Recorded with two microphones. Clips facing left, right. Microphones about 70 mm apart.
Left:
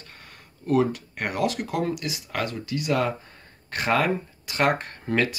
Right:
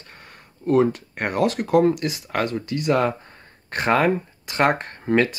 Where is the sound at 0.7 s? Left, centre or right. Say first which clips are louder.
Right 4 dB; right.